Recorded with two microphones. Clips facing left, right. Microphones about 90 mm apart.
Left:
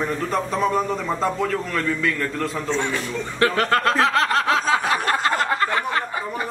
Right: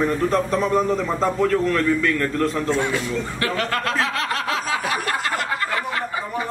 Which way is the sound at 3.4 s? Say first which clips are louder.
Left 8 dB; 35° left (ahead or behind).